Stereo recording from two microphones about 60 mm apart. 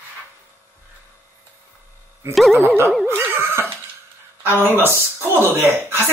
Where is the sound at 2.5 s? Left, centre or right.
Right.